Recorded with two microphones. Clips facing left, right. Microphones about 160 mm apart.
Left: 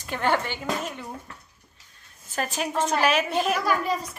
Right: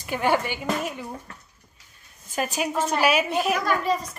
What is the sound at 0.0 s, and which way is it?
A woman's voice, 10° right (ahead or behind).